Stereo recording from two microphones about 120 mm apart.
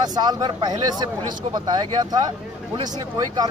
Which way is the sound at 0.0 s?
35° right (ahead or behind).